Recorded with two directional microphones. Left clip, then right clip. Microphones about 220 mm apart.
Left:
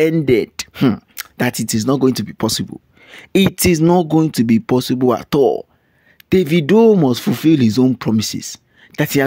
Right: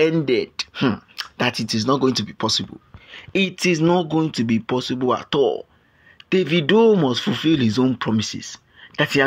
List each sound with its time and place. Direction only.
0.0 s speech: 55° left (ahead or behind)